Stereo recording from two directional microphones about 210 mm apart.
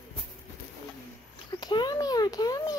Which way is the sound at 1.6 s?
20° left (ahead or behind).